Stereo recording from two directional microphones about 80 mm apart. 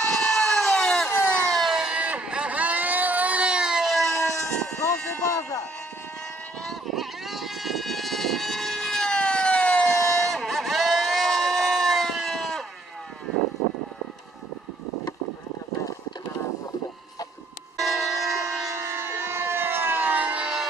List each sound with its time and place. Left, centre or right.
0.0 s a sound: centre
1.6 s vehicle: centre
4.8 s a sound: left
6.6 s vehicle: centre
17.7 s train: centre
18.7 s siren: right; by 20.6 s centre